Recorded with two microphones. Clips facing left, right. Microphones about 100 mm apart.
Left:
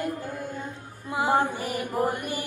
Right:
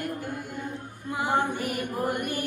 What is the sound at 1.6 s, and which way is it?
Mantra, 20° left (ahead or behind).